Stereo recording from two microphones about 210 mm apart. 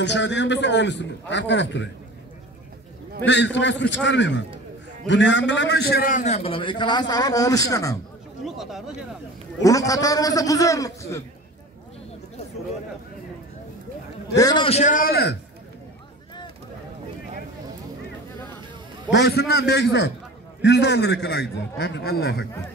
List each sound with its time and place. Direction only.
0.0 s a man's voice: 55° left (ahead or behind)
3.3 s a man's voice: 60° left (ahead or behind); by 8.0 s 15° left (ahead or behind)
8.5 s speech: centre (ahead or behind)
9.6 s a man's voice: 15° left (ahead or behind)
14.3 s a man's voice: 20° left (ahead or behind); by 15.3 s 45° left (ahead or behind)
19.1 s a man's voice: 50° left (ahead or behind)